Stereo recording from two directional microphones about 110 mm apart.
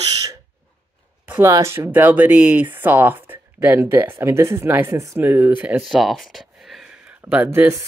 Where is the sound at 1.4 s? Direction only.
30° right (ahead or behind).